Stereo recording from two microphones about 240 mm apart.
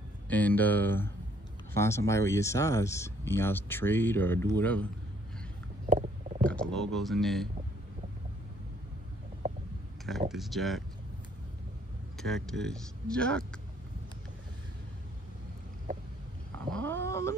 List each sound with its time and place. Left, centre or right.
0.3 s speech: centre
5.9 s stomach rumble: right
6.4 s speech: centre
10.3 s speech: centre
12.2 s speech: centre
16.7 s cat: centre